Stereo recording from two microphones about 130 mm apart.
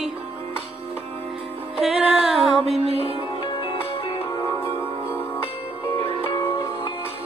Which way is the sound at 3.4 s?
35° left (ahead or behind).